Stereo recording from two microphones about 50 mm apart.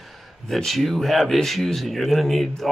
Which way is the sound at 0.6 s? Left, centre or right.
Centre.